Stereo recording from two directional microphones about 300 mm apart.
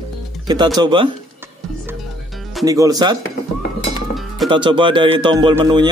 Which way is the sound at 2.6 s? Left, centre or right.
Centre.